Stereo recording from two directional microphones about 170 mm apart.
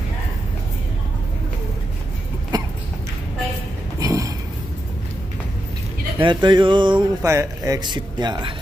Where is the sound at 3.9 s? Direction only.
20° right (ahead or behind).